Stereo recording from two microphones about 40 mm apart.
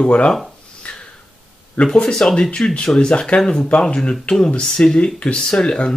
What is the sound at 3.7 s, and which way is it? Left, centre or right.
Speech, left.